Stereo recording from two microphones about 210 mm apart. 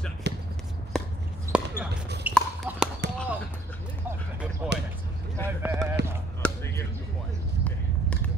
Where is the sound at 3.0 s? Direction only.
55° right (ahead or behind).